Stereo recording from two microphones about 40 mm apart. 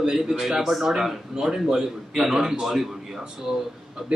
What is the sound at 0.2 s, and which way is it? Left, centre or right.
A man's voice, centre.